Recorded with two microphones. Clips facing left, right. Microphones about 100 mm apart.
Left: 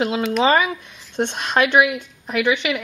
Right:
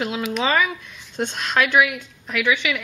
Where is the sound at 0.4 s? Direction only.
45° left (ahead or behind).